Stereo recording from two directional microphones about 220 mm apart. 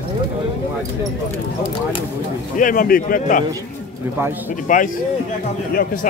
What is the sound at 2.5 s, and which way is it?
Speech, 40° left (ahead or behind).